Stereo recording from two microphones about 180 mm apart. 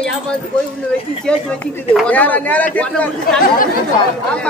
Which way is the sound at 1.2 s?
5° left (ahead or behind).